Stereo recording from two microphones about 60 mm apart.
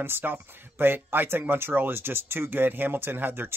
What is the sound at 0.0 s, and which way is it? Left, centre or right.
Speech, right.